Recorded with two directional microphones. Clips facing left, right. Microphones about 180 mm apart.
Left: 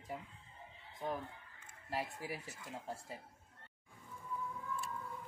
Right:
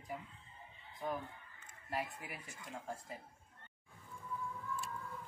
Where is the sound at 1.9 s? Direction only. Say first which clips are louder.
Left 1 dB; 30° left (ahead or behind).